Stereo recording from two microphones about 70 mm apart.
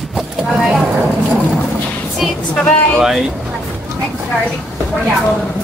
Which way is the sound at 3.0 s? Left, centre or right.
Centre.